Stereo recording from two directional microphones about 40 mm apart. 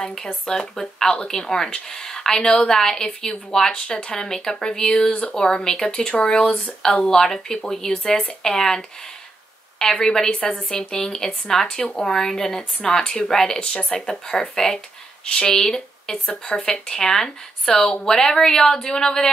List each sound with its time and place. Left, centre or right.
0.0 s speech: centre
5.9 s speech: left
10.0 s speech: centre
13.6 s speech: left
16.3 s speech: left